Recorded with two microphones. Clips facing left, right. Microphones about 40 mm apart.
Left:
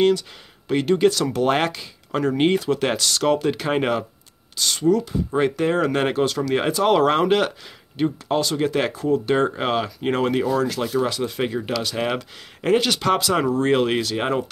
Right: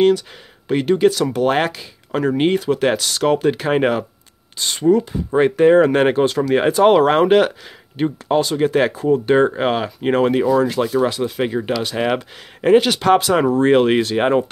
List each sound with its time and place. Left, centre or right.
0.7 s speech: centre
4.6 s speech: right
7.0 s speech: centre